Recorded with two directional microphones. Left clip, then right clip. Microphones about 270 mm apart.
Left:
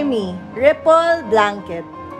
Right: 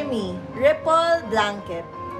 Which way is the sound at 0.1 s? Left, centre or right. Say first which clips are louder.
Left 6 dB; left.